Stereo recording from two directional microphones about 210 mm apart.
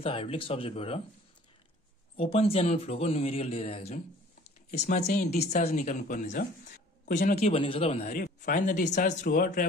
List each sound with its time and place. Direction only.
0.0 s speech: 25° left (ahead or behind)
2.1 s speech: 30° left (ahead or behind)
6.0 s speech: 40° left (ahead or behind)